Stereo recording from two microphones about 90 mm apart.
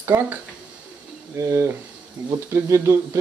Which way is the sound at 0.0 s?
30° right (ahead or behind).